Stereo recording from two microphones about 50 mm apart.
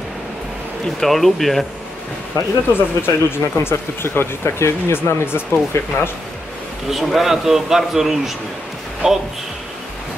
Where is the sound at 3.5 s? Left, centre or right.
Left.